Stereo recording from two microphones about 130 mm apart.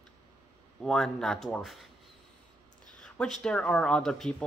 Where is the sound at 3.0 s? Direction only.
5° left (ahead or behind).